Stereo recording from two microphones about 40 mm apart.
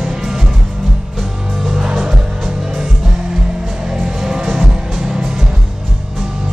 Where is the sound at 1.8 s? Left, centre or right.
Centre.